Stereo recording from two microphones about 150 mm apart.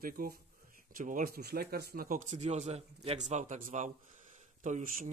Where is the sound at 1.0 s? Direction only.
65° right (ahead or behind).